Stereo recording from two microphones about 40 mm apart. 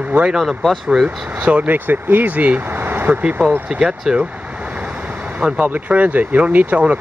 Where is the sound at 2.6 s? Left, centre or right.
Right.